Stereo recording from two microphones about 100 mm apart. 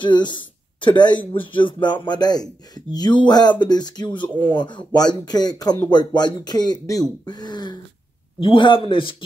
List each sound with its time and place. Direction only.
0.0 s speech: 50° left (ahead or behind)
8.4 s a man's voice: 55° left (ahead or behind)